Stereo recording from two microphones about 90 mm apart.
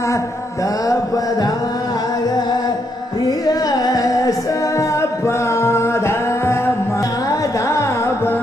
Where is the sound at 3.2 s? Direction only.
45° left (ahead or behind).